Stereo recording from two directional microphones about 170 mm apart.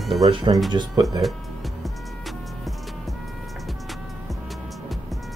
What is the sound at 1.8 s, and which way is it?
Music, centre (ahead or behind).